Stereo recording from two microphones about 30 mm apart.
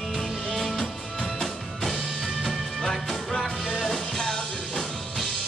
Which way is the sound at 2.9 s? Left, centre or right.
Centre.